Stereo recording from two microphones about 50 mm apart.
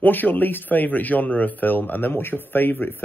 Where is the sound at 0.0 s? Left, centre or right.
Left.